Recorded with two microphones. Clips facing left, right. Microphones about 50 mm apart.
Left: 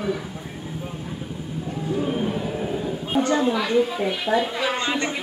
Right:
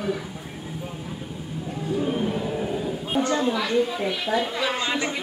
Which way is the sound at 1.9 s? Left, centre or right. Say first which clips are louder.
Even; centre.